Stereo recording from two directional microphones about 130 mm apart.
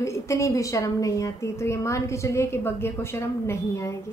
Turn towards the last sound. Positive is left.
turn(degrees=20)  # may be behind; listen again after turning